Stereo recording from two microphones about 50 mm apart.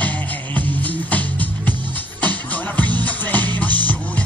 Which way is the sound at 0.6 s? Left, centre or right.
Left.